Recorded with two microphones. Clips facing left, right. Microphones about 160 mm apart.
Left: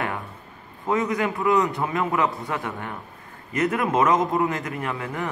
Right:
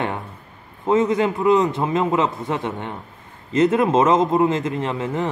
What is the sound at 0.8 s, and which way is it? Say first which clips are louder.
A man's voice: right 6 dB; 25° right (ahead or behind).